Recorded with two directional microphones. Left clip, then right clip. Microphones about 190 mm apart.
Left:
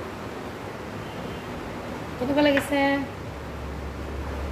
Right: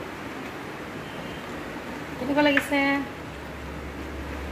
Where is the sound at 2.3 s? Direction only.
15° right (ahead or behind).